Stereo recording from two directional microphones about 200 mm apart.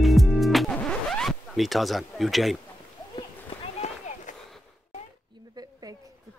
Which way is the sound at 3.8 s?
35° left (ahead or behind).